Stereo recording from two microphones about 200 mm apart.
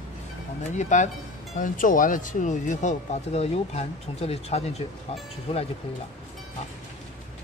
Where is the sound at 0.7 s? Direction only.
35° left (ahead or behind).